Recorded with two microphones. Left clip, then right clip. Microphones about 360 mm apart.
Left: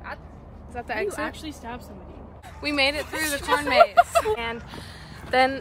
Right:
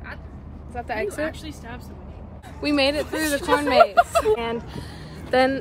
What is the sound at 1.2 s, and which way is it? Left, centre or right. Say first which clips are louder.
Speech: right 3 dB; centre.